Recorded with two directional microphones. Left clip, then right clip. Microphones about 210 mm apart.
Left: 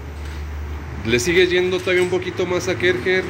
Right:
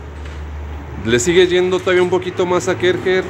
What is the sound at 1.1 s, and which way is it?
A man's voice, 20° right (ahead or behind).